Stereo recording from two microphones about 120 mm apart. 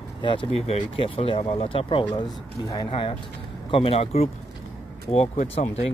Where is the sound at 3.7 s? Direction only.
55° left (ahead or behind).